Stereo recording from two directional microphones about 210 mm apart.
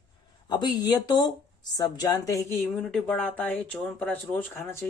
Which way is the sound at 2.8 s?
5° left (ahead or behind).